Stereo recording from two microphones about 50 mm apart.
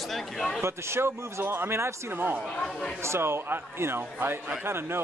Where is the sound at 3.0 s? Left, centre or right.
Right.